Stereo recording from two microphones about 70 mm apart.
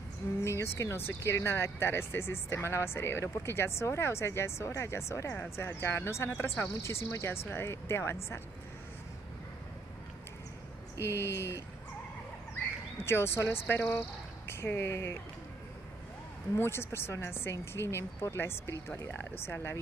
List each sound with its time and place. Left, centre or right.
0.4 s speech: left
11.0 s speech: left
13.0 s speech: left
16.5 s speech: left